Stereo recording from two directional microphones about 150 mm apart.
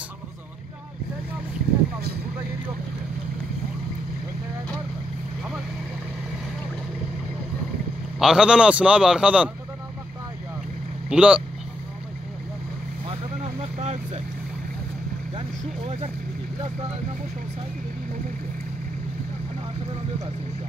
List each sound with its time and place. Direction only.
8.2 s a man's voice: 5° right (ahead or behind)
11.1 s a man's voice: 5° right (ahead or behind)
13.7 s speech: 50° right (ahead or behind)